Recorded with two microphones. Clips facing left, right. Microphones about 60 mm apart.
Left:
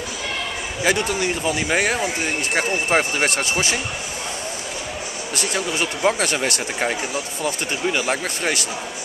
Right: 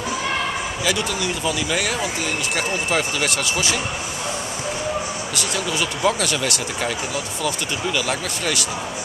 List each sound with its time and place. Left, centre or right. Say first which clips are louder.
0.8 s speech: left 4 dB; left
5.3 s speech: left 2 dB; left